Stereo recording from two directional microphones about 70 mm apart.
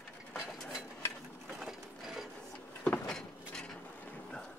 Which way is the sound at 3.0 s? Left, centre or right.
Centre.